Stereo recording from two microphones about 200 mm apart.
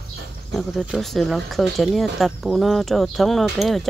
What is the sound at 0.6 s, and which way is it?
Speech, centre (ahead or behind).